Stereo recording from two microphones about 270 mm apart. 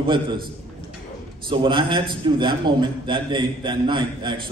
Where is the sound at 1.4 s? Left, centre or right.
Centre.